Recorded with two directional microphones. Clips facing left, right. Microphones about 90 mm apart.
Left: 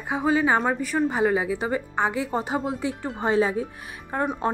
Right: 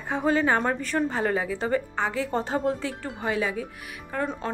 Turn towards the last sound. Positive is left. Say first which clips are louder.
# left 3 dB
turn(degrees=25)  # may be behind; listen again after turning